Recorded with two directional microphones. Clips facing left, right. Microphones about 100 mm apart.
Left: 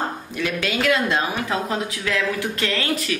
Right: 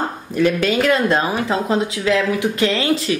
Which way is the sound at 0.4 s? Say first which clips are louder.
Right 8 dB; 40° right (ahead or behind).